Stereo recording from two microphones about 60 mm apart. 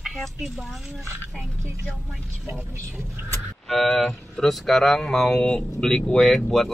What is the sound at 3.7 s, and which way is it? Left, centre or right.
Speech, centre.